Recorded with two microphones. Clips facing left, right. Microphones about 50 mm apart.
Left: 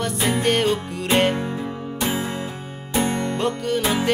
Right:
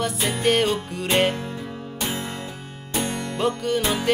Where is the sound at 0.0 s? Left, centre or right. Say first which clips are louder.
Left 1 dB; centre.